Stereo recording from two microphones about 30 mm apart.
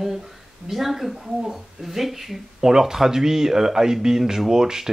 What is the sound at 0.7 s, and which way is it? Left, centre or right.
Speech, centre.